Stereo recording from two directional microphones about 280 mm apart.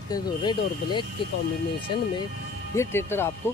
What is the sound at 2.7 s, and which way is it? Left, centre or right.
Speech, centre.